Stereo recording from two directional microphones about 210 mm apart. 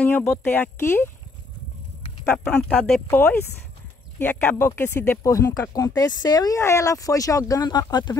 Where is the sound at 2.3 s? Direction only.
10° left (ahead or behind).